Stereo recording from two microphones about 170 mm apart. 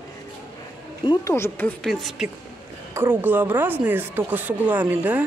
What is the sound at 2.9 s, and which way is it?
Speech, 10° right (ahead or behind).